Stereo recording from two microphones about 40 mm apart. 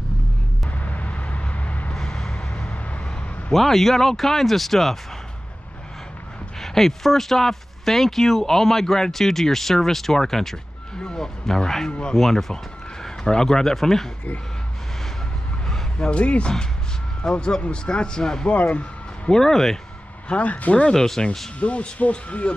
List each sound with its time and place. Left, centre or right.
0.7 s vehicle: left
2.0 s vehicle: centre
3.5 s speech: centre
6.6 s speech: centre
16.1 s speech: left
18.5 s speech: left
19.2 s speech: centre
20.2 s speech: left
20.9 s speech: centre
21.5 s speech: left